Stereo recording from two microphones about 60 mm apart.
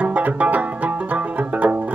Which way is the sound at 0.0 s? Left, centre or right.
Right.